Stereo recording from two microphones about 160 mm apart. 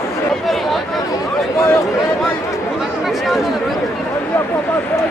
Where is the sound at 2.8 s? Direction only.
Centre (ahead or behind).